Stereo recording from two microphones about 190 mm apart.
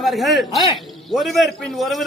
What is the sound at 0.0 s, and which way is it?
A man's voice, centre (ahead or behind).